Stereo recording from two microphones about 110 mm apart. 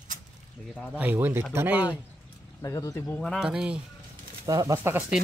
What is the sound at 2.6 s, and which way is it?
Speech, 30° left (ahead or behind).